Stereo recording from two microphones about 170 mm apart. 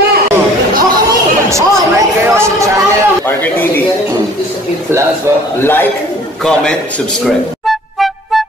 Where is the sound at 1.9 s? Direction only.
15° right (ahead or behind).